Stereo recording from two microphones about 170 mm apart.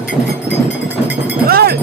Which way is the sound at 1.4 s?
60° right (ahead or behind).